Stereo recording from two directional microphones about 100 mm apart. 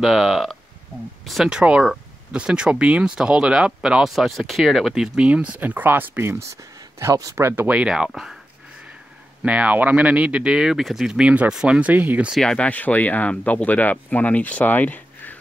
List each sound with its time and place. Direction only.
0.0 s speech: centre (ahead or behind)
9.4 s speech: 15° right (ahead or behind)
12.4 s speech: 10° left (ahead or behind)